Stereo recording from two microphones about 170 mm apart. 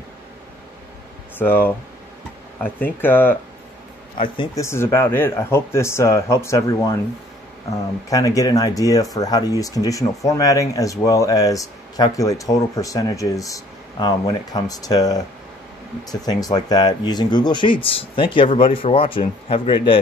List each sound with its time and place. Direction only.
1.4 s speech: 10° left (ahead or behind)
3.0 s speech: 10° left (ahead or behind)
4.6 s speech: 15° left (ahead or behind)
8.1 s speech: 20° left (ahead or behind)